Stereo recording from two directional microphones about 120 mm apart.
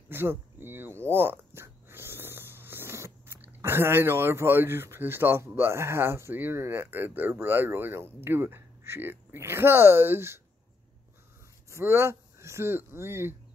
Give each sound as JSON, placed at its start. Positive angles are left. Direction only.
{"t": 0.1, "sound": "speech", "side_deg": -20}
{"t": 11.7, "sound": "speech", "side_deg": -20}